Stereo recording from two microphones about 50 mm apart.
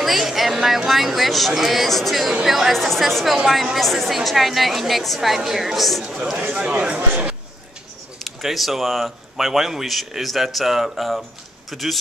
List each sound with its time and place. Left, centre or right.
0.0 s speech: centre
3.3 s speech: centre
6.7 s speech: right
8.2 s speech: centre